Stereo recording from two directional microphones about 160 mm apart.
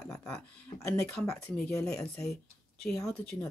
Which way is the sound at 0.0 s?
20° left (ahead or behind).